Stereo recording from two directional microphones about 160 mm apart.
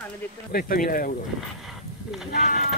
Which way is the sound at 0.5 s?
65° left (ahead or behind).